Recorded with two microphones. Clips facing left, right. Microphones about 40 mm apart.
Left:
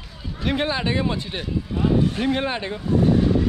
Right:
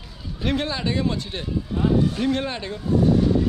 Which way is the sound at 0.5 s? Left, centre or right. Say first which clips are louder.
Left 2 dB; left.